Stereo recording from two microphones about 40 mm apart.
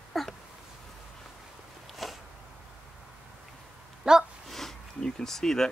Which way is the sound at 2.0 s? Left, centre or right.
Centre.